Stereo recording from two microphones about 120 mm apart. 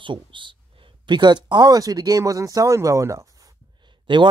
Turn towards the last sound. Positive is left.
turn(degrees=-40)  # may be behind; listen again after turning